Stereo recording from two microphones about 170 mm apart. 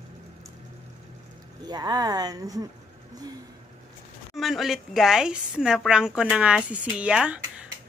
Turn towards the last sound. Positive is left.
turn(degrees=-5)  # may be behind; listen again after turning